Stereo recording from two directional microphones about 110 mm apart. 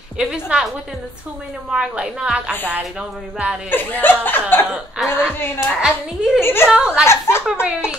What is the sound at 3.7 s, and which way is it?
Speech, 15° left (ahead or behind).